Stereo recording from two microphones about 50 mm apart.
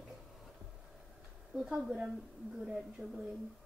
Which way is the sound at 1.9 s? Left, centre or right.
Centre.